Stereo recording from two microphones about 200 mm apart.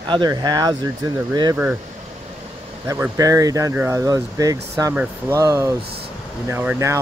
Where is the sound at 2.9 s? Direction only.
15° right (ahead or behind).